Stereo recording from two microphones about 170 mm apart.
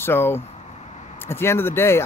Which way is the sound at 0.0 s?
15° left (ahead or behind).